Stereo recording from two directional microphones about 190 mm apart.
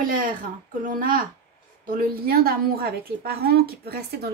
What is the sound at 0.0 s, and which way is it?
A woman's voice, 45° right (ahead or behind).